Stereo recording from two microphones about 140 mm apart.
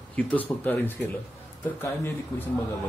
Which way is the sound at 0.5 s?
20° left (ahead or behind).